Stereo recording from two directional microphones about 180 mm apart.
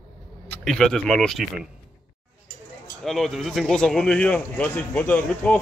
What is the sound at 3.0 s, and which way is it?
Speech, centre (ahead or behind).